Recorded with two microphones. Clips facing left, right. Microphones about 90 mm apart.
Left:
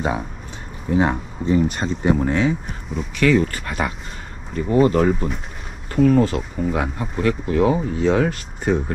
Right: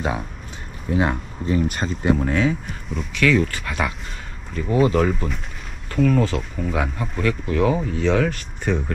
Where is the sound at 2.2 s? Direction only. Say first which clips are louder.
Left 1 dB; 35° left (ahead or behind).